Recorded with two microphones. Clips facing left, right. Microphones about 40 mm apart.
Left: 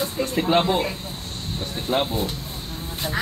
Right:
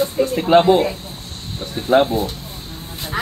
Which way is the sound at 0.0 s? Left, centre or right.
Centre.